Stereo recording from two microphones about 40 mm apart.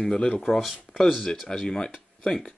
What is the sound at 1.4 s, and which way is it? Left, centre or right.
Speech, centre.